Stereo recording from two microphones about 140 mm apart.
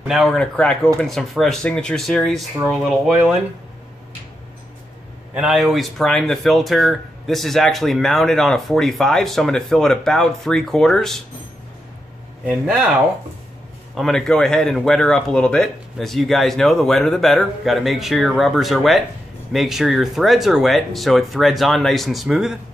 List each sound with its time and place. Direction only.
0.1 s speech: centre (ahead or behind)
5.3 s speech: 5° right (ahead or behind)
12.4 s speech: 5° right (ahead or behind)
13.9 s speech: 5° left (ahead or behind)